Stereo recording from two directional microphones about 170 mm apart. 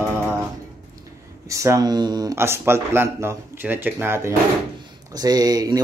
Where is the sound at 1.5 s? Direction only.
20° right (ahead or behind).